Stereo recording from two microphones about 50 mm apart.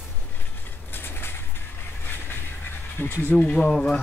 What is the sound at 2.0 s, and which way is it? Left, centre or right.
Train, left.